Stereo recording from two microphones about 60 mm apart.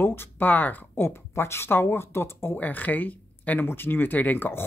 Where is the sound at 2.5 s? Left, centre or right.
Left.